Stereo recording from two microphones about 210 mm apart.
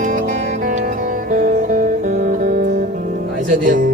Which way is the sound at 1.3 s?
40° right (ahead or behind).